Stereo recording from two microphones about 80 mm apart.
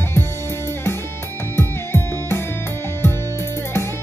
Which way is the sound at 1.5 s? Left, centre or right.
Left.